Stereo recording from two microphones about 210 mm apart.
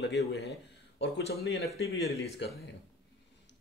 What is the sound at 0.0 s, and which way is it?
Speech, 55° left (ahead or behind).